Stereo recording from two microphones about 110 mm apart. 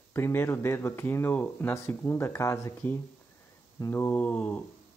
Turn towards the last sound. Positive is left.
turn(degrees=15)  # may be behind; listen again after turning